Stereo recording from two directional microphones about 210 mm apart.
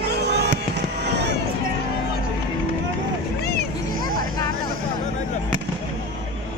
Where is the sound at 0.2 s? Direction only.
50° right (ahead or behind).